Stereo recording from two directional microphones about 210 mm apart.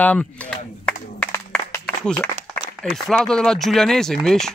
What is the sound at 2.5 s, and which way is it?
Speech, 5° left (ahead or behind).